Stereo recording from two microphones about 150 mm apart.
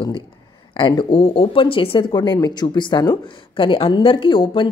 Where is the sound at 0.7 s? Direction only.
35° left (ahead or behind).